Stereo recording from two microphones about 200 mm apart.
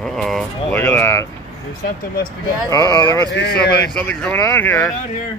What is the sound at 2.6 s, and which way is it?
Speech, 20° left (ahead or behind).